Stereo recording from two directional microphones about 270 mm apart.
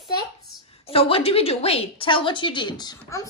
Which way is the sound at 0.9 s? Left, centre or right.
Left.